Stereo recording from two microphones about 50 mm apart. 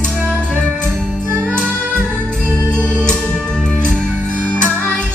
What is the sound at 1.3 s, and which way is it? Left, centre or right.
Music, right.